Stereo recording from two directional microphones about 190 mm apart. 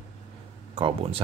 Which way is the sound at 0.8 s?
30° right (ahead or behind).